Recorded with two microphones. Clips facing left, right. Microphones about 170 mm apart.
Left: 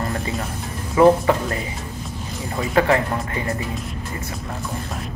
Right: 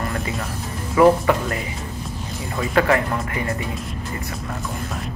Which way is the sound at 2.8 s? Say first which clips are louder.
Even; 25° left (ahead or behind).